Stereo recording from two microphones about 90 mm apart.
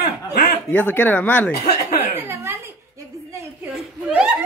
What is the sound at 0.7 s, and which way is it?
Speech, 20° left (ahead or behind).